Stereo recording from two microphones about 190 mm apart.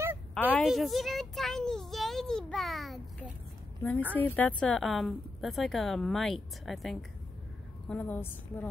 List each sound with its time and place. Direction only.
0.3 s a sound: 5° left (ahead or behind)
0.7 s child singing: centre (ahead or behind)
4.1 s a woman's voice: 10° left (ahead or behind)